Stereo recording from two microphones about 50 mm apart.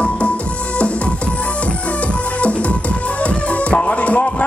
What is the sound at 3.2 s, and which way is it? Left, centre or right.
Music, left.